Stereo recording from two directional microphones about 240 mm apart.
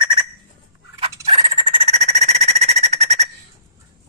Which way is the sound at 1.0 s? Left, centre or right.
Right.